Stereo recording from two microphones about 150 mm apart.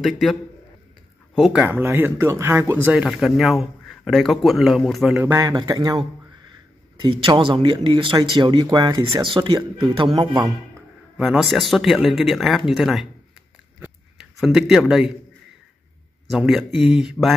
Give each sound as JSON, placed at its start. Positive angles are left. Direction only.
{"t": 0.0, "sound": "speech", "side_deg": 0}
{"t": 5.1, "sound": "a man's voice", "side_deg": -15}
{"t": 11.1, "sound": "speech", "side_deg": -5}
{"t": 13.7, "sound": "a sound", "side_deg": -5}
{"t": 16.3, "sound": "speech", "side_deg": 0}